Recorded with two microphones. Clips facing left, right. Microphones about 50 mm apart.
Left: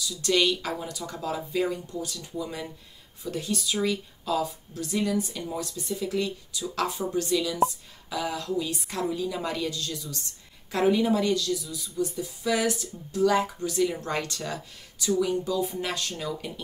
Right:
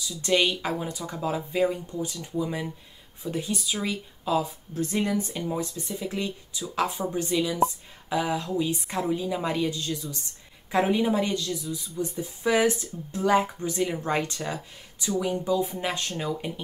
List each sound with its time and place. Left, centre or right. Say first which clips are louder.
0.0 s speech: even; right
4.7 s speech: right 1 dB; right